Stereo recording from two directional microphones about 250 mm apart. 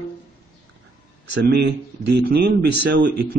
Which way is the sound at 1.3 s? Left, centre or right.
Right.